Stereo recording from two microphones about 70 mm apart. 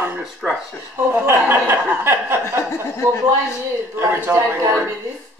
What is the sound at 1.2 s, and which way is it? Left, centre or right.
Chuckle, right.